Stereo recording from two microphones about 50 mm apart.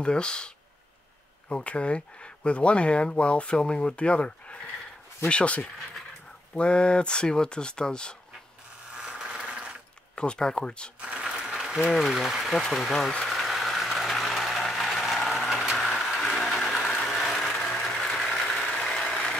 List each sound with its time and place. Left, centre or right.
0.0 s speech: centre
1.5 s speech: left
8.9 s engine: centre
9.5 s sewing machine: centre
10.1 s speech: centre
11.0 s ratchet: right
11.2 s ratchet: centre
12.3 s speech: centre
12.6 s speech: centre
13.2 s a sound: centre
15.1 s vehicle: centre
15.8 s a sound: centre
17.0 s vehicle: centre